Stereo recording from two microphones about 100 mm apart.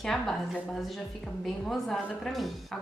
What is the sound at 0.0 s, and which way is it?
A woman's voice, centre (ahead or behind).